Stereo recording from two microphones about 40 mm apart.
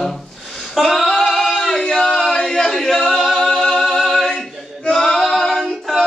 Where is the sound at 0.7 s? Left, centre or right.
Centre.